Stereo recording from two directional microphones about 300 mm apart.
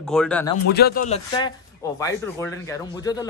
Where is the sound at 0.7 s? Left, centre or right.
Left.